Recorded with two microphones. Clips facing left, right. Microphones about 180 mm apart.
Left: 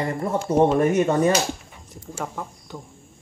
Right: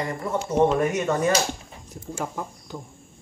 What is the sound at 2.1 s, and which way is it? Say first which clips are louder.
Speech: even; 5° right (ahead or behind).